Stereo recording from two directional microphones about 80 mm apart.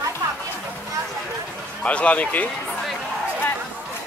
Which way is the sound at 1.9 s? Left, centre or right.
Centre.